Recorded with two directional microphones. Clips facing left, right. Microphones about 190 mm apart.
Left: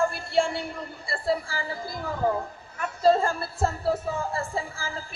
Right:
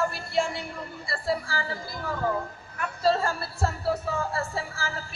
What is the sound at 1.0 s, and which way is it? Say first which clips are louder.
Speech: left 2 dB; 25° left (ahead or behind).